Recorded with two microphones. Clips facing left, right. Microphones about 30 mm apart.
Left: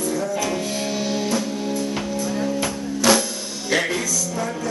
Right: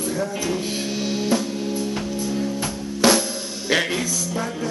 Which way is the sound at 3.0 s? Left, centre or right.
Right.